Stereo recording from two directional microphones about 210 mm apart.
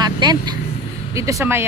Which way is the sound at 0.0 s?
20° right (ahead or behind).